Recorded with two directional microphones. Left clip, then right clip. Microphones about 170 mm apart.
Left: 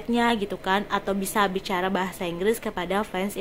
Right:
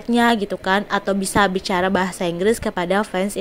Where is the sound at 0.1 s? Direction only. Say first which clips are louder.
Right 6 dB; 35° right (ahead or behind).